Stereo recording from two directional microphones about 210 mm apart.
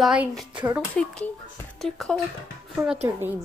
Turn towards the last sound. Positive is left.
turn(degrees=-10)  # may be behind; listen again after turning